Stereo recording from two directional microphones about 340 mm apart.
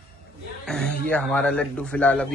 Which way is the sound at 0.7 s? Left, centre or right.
Centre.